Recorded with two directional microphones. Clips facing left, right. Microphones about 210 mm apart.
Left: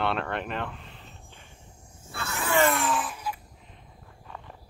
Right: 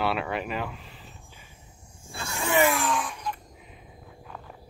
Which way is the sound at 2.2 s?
30° right (ahead or behind).